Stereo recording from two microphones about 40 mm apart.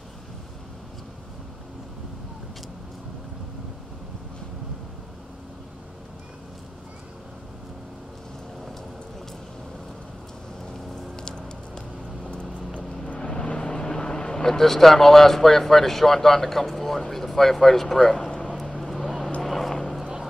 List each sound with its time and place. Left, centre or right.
11.1 s music: left
13.2 s speech: centre
18.5 s vehicle: centre